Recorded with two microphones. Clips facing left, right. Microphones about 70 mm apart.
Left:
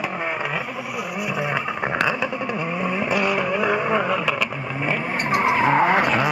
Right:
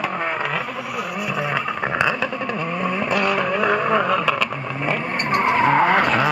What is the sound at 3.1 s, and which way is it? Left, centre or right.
Vehicle, centre.